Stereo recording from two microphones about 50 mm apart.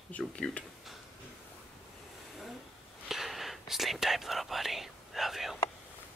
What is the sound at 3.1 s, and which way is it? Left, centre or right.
Whispering, centre.